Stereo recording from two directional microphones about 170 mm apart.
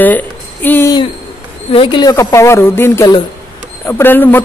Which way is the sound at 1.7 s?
30° left (ahead or behind).